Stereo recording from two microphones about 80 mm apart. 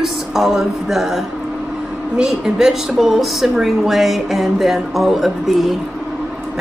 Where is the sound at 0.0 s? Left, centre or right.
Centre.